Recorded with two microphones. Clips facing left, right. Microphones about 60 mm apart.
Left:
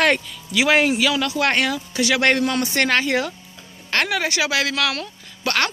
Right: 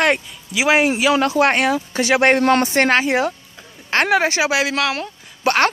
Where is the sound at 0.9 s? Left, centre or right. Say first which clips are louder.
Right 4 dB; right.